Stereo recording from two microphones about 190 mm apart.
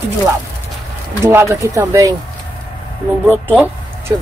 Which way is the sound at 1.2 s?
15° right (ahead or behind).